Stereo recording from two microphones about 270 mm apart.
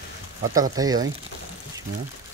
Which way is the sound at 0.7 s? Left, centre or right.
Centre.